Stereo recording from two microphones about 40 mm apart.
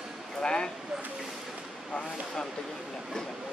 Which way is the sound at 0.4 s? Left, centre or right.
Centre.